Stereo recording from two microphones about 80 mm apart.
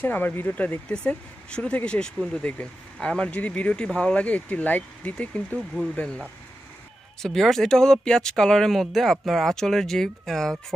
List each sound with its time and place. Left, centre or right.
0.0 s speech: left; by 10.5 s centre